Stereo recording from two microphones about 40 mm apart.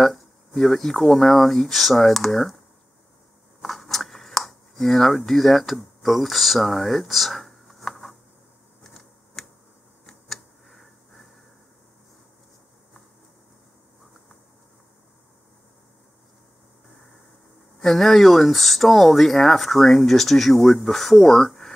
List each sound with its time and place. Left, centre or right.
0.0 s speech: centre
3.6 s speech: centre
7.9 s a sound: centre
10.0 s tick-tock: centre
10.7 s a sound: centre
17.7 s speech: centre